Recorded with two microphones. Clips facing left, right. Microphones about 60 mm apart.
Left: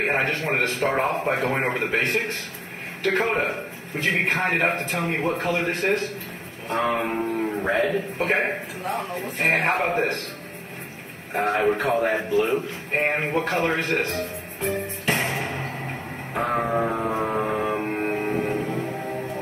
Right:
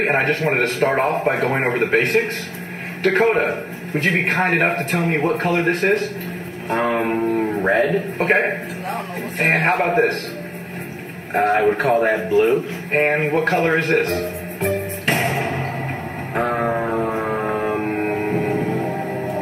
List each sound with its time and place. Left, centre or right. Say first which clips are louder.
0.0 s speech: right 5 dB; right
1.6 s speech: right 6 dB; right
6.7 s music: right 4 dB; right
7.3 s a man's voice: right 5 dB; right
9.4 s a man's voice: right 4 dB; right
11.3 s speech: right 5 dB; right
14.6 s music: right 5 dB; right
16.7 s music: right 3 dB; right